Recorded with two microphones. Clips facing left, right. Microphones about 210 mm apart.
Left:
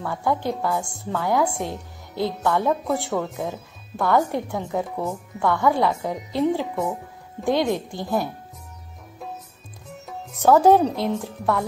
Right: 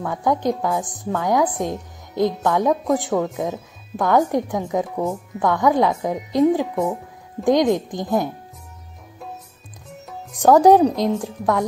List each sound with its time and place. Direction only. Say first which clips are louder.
0.0 s a woman's voice: right 4 dB; 15° right (ahead or behind)
10.4 s a woman's voice: right 3 dB; 15° right (ahead or behind)